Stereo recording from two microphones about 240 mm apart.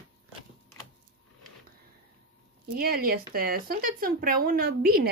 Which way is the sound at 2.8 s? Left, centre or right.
Right.